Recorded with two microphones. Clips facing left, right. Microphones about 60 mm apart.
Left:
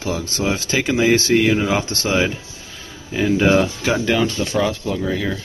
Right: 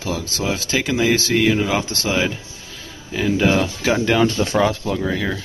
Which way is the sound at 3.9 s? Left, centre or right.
Centre.